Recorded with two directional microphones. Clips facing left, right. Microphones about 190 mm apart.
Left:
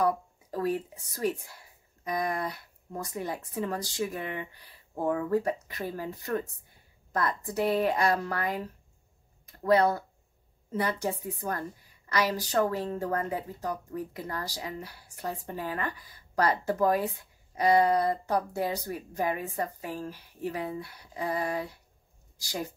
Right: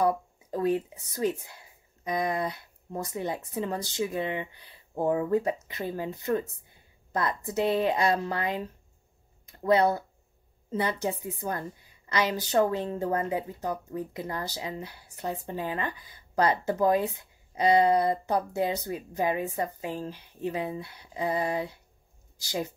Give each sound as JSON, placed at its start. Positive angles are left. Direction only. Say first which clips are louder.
{"t": 0.0, "sound": "a woman's voice", "louder": "right 1 dB", "side_deg": -20}